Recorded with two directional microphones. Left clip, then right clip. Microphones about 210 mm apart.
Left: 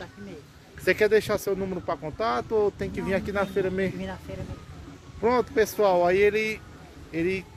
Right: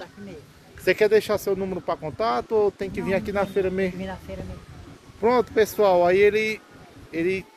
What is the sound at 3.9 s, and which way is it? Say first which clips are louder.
Speech: right 2 dB; 5° left (ahead or behind).